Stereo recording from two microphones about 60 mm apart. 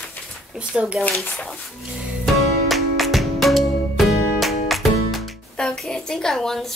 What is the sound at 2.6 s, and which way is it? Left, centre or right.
Music, centre.